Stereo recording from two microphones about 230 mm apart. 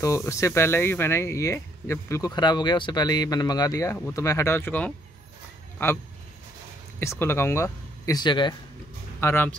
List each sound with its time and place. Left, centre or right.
0.0 s speech: centre
7.0 s speech: centre
9.2 s speech: centre